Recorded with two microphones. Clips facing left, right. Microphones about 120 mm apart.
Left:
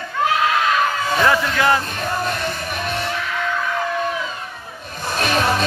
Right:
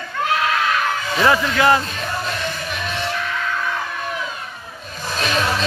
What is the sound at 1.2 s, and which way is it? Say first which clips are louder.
Speech: right 3 dB; 5° right (ahead or behind).